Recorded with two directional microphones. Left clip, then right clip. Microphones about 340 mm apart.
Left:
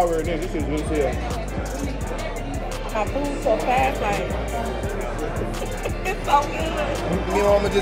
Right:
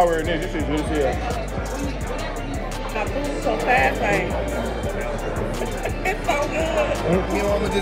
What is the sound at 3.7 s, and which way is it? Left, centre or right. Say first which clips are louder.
Speech: right 2 dB; centre.